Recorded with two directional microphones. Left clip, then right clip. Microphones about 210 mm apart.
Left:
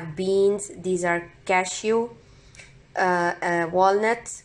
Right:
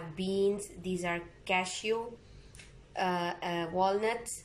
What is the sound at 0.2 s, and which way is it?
A woman's voice, 15° left (ahead or behind).